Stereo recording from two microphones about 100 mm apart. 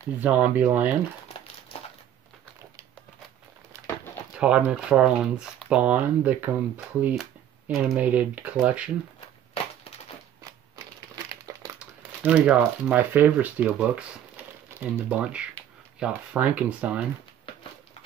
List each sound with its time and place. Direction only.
0.2 s speech: 15° right (ahead or behind)
3.7 s a sound: 30° right (ahead or behind)
4.4 s speech: 10° right (ahead or behind)
11.8 s speech: 10° right (ahead or behind)